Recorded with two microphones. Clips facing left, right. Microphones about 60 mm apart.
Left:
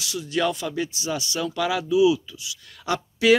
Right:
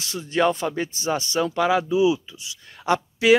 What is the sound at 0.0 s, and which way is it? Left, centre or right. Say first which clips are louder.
Speech: right 3 dB; right.